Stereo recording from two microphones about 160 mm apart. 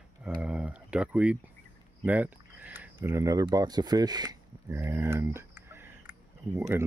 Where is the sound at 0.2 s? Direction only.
5° right (ahead or behind).